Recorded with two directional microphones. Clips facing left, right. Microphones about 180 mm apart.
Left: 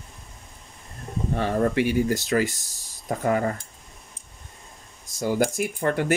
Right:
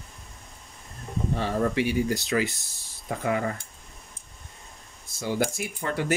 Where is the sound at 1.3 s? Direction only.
55° left (ahead or behind).